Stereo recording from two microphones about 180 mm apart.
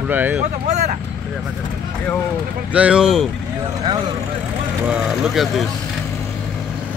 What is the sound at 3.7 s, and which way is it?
Speech, 20° right (ahead or behind).